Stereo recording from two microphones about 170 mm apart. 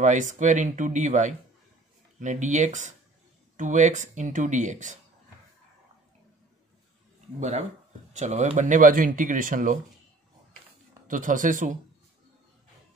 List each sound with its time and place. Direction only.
0.0 s speech: 45° right (ahead or behind)
7.3 s speech: 45° right (ahead or behind)
11.1 s speech: 50° right (ahead or behind)